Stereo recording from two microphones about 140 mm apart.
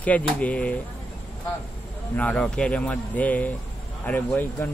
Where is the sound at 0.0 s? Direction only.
10° left (ahead or behind).